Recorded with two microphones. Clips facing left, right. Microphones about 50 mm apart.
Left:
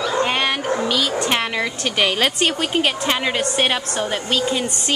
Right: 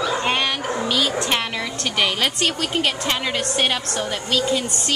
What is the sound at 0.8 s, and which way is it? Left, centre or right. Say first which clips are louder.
A woman's voice: right 1 dB; centre.